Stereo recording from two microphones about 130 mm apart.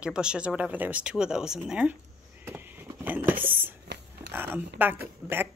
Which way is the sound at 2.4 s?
15° right (ahead or behind).